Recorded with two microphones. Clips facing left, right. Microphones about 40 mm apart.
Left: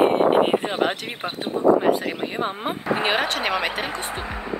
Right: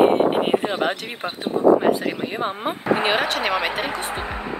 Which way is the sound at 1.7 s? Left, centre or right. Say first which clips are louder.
Right 1 dB; centre.